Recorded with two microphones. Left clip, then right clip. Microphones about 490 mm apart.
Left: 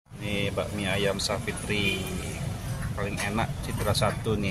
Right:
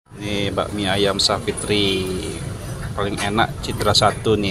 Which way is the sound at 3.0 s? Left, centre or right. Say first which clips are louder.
Right 10 dB; left.